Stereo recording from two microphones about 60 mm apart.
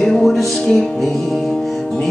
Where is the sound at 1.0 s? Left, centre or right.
Centre.